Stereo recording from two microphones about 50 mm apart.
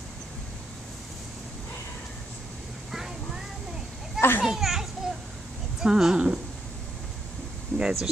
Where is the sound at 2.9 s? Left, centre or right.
Centre.